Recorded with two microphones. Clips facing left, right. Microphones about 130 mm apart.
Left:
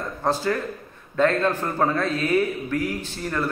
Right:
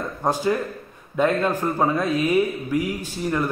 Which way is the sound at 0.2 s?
15° right (ahead or behind).